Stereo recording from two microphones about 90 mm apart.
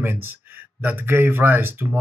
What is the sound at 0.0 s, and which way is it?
Speech, 25° right (ahead or behind).